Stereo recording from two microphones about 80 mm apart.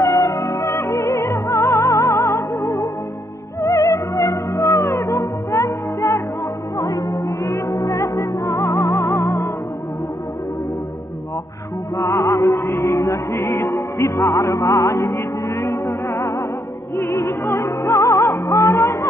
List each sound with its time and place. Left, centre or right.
0.0 s music: left
12.0 s music: left